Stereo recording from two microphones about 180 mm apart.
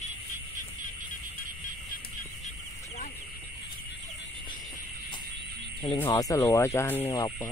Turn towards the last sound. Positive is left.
turn(degrees=20)  # may be behind; listen again after turning